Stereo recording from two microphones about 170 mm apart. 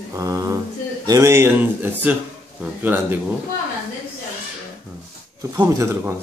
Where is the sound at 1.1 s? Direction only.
15° right (ahead or behind).